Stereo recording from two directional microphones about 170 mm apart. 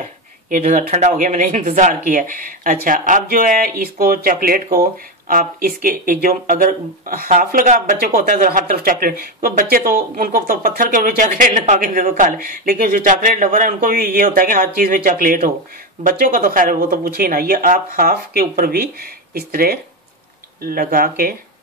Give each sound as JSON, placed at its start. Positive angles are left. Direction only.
{"t": 0.0, "sound": "speech", "side_deg": -45}